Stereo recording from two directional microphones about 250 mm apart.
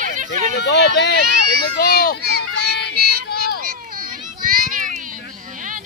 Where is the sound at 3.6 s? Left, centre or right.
Right.